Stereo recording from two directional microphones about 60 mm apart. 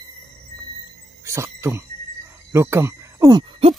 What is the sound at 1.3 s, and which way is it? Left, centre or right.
Speech, right.